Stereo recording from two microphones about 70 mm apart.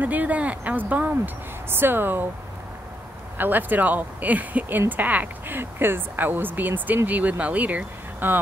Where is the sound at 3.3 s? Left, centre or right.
Right.